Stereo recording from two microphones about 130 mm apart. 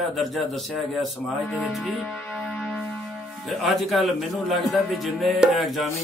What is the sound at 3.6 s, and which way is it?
Speech, centre (ahead or behind).